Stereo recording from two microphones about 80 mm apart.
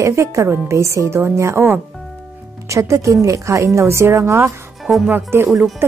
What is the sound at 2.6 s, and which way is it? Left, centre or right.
A woman's voice, right.